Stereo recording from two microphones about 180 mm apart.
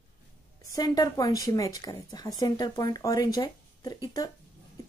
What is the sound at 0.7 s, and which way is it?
Speech, 20° left (ahead or behind).